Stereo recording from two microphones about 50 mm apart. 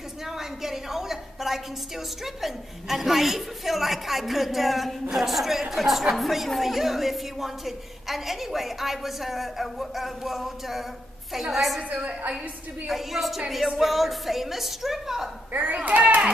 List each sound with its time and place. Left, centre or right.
0.3 s a sound: centre
2.2 s a woman's voice: centre
11.9 s a woman's voice: right
12.8 s a woman's voice: centre
15.5 s a child's voice: right